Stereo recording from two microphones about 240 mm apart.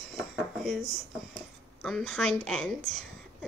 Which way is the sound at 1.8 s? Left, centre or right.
Centre.